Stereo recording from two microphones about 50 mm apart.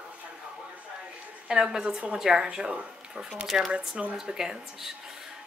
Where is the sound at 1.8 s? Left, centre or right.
Right; by 3.7 s centre.